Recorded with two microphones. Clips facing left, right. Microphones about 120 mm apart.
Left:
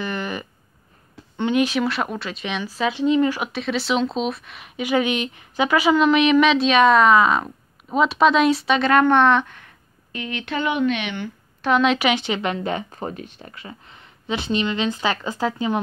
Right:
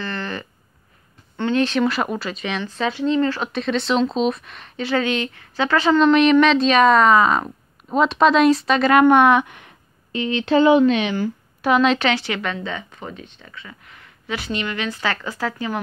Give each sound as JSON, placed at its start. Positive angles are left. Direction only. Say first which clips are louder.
{"t": 0.0, "sound": "a sound", "louder": "left 1 dB", "side_deg": 15}
{"t": 1.3, "sound": "speech", "louder": "even", "side_deg": 15}
{"t": 10.1, "sound": "speech", "louder": "right 9 dB", "side_deg": -30}
{"t": 11.6, "sound": "speech", "louder": "right 1 dB", "side_deg": 0}
{"t": 12.1, "sound": "speech", "louder": "left 1 dB", "side_deg": 20}
{"t": 12.5, "sound": "speech", "louder": "left 4 dB", "side_deg": 40}